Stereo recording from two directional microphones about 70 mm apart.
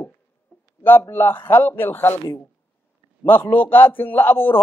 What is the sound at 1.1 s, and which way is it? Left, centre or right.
A man's voice, left.